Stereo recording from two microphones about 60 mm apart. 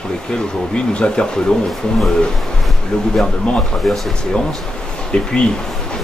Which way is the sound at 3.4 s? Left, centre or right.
Centre.